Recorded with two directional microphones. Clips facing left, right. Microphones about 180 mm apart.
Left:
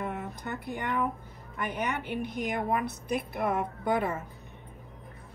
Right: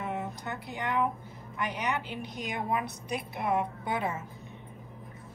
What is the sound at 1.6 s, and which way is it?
A woman's voice, 55° left (ahead or behind).